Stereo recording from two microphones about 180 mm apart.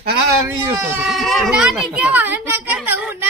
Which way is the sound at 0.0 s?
60° right (ahead or behind).